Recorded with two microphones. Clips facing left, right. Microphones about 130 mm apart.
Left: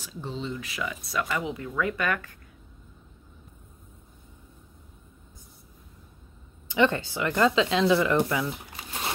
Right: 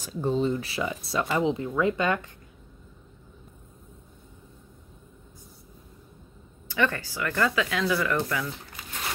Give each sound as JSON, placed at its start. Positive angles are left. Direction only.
{"t": 0.0, "sound": "speech", "side_deg": -50}
{"t": 6.7, "sound": "speech", "side_deg": 20}